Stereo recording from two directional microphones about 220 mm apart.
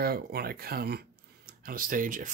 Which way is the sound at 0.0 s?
45° right (ahead or behind).